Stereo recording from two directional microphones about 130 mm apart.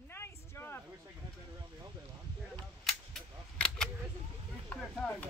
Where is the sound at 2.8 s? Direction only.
Centre (ahead or behind).